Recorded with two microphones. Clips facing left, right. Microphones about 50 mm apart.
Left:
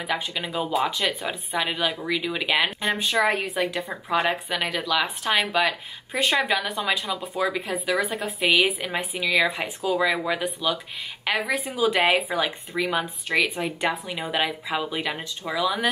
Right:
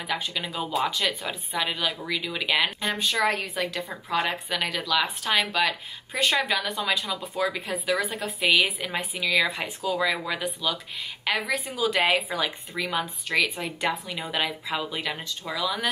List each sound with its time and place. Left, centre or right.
0.0 s speech: centre